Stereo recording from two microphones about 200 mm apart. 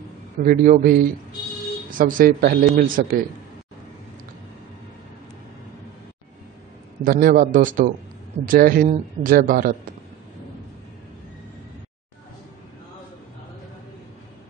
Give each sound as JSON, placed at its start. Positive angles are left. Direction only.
{"t": 0.4, "sound": "a man's voice", "side_deg": -45}
{"t": 7.1, "sound": "a man's voice", "side_deg": -45}